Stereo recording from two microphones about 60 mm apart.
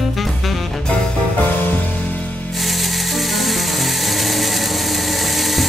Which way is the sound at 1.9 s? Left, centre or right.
Left.